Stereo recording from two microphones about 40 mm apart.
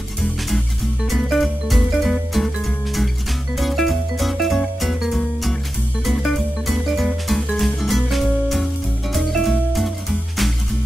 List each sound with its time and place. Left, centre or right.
1.0 s music: centre